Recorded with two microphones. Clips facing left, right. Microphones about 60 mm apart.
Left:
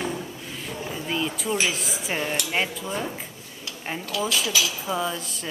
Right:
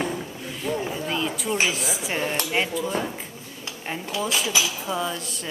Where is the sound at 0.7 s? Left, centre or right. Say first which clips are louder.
Right 5 dB; centre.